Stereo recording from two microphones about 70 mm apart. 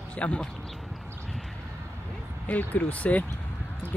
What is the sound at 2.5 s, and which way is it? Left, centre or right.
Speech, left.